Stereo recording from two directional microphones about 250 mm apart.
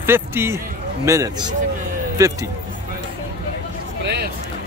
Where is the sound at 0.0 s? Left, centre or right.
Centre.